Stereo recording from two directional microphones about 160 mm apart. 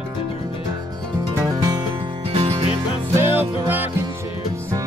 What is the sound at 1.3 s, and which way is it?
Music, 20° right (ahead or behind).